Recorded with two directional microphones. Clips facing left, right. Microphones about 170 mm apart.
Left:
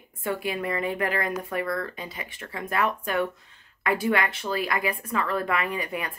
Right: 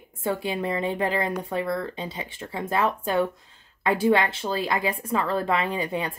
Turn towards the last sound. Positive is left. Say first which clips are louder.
# right 3 dB
turn(degrees=-25)  # may be behind; listen again after turning